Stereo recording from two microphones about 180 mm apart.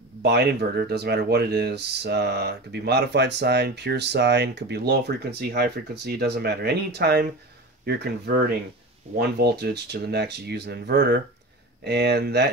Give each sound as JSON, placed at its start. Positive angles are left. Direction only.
{"t": 0.2, "sound": "speech", "side_deg": -65}